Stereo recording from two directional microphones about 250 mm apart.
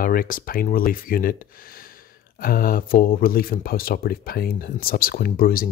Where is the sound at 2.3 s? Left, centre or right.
Left.